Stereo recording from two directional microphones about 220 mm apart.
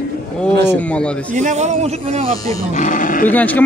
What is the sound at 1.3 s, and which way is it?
A man's voice, 35° right (ahead or behind).